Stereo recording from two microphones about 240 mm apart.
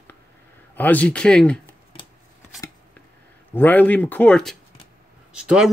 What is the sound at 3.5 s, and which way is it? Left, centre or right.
Speech, centre.